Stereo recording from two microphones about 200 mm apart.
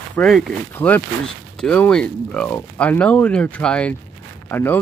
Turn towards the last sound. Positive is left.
turn(degrees=10)  # may be behind; listen again after turning